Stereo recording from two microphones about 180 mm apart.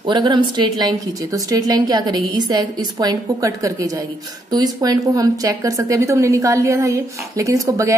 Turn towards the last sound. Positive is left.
turn(degrees=-15)  # may be behind; listen again after turning